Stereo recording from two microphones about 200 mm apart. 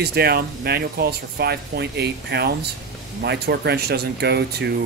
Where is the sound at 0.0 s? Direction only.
50° right (ahead or behind).